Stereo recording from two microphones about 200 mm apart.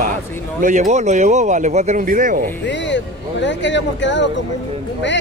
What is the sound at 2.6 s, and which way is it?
Speech, 65° left (ahead or behind).